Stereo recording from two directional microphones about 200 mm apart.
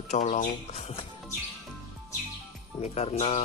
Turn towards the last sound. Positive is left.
turn(degrees=30)  # may be behind; listen again after turning